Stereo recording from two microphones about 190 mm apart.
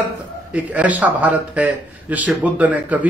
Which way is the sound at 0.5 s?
5° right (ahead or behind).